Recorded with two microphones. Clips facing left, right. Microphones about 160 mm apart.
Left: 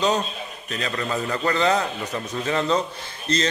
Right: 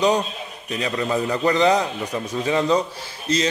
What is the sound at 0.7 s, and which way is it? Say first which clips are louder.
A man's voice: right 4 dB; 15° right (ahead or behind).